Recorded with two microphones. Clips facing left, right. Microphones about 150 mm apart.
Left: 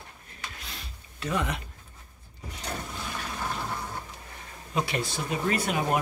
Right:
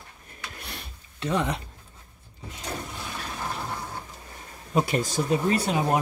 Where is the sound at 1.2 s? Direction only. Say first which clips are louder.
Right 3 dB; 30° right (ahead or behind).